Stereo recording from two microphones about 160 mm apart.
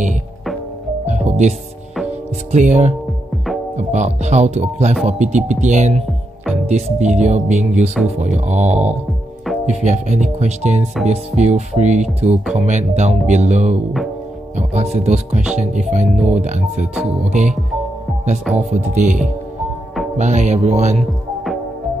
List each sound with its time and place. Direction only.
1.0 s music: 45° right (ahead or behind)
2.5 s speech: 50° right (ahead or behind)
18.7 s speech: 45° right (ahead or behind)